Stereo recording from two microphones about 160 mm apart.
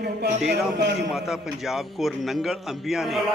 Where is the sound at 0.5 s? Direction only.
90° right.